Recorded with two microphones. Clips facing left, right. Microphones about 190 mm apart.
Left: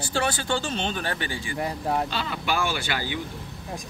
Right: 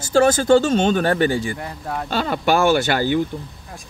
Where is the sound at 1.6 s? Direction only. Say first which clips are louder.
Left 2 dB; 10° left (ahead or behind).